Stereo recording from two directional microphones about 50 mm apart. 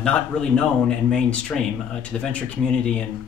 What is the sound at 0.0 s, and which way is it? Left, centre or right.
A man's voice, centre.